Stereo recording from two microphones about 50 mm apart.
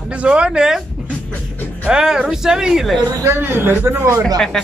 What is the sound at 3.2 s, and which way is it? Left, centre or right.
Speech, right.